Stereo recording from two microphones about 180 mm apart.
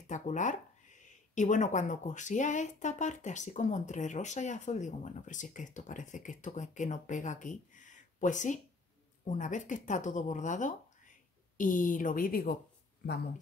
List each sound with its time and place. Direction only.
0.0 s speech: 45° left (ahead or behind)